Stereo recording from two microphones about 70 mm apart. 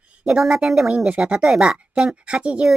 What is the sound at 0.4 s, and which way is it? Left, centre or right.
Speech, centre.